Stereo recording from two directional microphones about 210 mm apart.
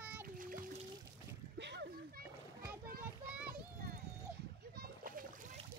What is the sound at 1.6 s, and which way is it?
Splash, 55° right (ahead or behind).